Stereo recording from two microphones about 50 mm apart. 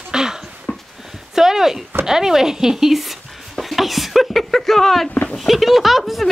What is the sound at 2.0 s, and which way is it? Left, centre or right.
Speech, centre.